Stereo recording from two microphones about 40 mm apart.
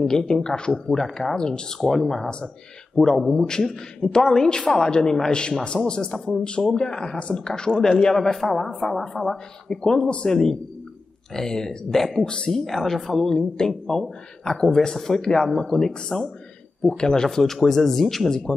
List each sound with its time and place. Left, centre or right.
0.0 s speech: centre
0.3 s speech: centre